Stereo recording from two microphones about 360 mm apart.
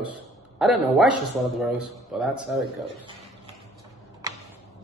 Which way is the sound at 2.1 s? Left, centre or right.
Centre.